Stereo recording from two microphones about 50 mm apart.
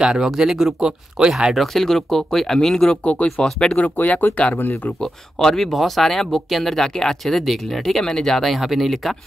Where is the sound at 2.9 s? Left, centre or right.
Left.